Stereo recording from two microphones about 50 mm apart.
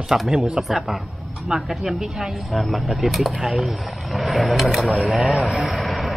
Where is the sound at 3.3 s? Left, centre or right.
Centre.